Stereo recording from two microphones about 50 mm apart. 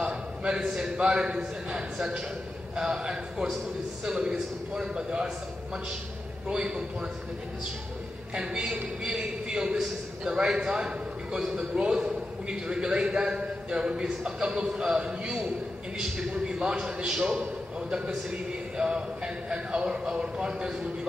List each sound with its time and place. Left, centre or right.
0.0 s a sound: centre
0.9 s a man's voice: centre
6.5 s a man's voice: centre
8.4 s a man's voice: centre